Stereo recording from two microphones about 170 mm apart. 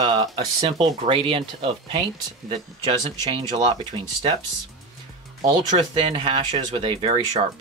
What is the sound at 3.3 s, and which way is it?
Speech, 25° right (ahead or behind).